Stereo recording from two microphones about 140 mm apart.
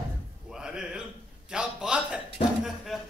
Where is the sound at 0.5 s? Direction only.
5° right (ahead or behind).